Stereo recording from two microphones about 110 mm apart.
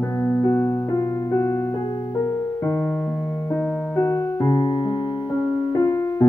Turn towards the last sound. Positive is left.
turn(degrees=25)  # may be behind; listen again after turning